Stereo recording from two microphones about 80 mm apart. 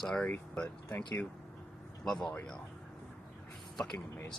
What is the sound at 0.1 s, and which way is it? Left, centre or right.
Speech, centre.